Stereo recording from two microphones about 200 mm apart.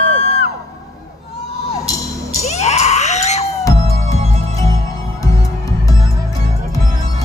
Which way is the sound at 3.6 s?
15° left (ahead or behind).